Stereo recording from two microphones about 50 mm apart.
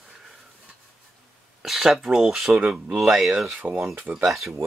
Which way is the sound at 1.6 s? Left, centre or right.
Centre.